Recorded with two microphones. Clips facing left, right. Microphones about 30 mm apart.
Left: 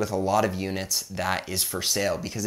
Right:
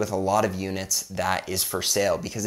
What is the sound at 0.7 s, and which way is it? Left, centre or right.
Speech, centre.